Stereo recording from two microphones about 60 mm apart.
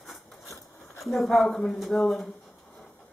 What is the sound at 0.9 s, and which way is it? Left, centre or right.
Speech, centre.